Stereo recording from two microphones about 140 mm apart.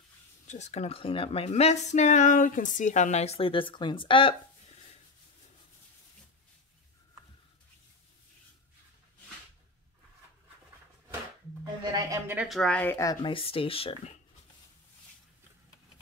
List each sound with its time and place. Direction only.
0.5 s speech: 55° left (ahead or behind)
11.6 s a sound: 30° right (ahead or behind)
12.4 s speech: 5° left (ahead or behind); by 13.9 s 40° left (ahead or behind)